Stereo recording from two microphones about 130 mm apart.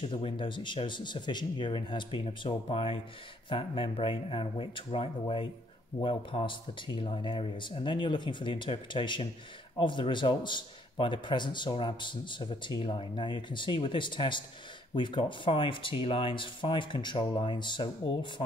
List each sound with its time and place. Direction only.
0.1 s a man's voice: 40° left (ahead or behind)